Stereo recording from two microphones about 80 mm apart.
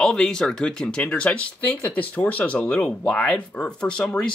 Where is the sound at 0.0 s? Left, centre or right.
Centre.